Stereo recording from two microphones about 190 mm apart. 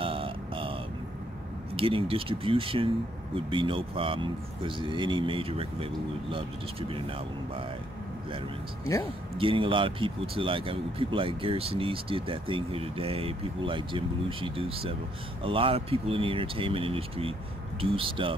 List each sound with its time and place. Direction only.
0.0 s vehicle: 30° right (ahead or behind)
1.8 s speech: 30° right (ahead or behind)
9.4 s speech: 30° right (ahead or behind)